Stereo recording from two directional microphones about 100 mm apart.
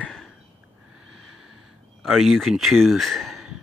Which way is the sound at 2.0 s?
Centre (ahead or behind).